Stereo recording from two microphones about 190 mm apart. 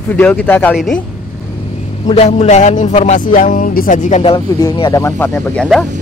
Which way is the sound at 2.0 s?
35° left (ahead or behind).